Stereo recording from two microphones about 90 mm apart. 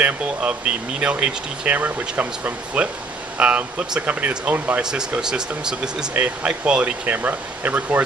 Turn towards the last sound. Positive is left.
turn(degrees=-20)  # may be behind; listen again after turning